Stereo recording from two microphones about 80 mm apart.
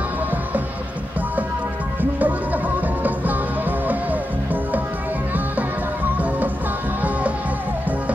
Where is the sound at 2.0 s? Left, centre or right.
Right.